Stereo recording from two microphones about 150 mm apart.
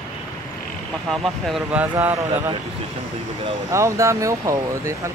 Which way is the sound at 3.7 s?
20° right (ahead or behind).